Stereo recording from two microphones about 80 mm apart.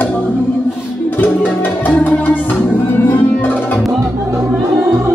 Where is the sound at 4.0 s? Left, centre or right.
Right.